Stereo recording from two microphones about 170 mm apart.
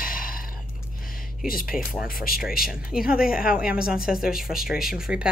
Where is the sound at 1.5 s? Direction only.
55° left (ahead or behind).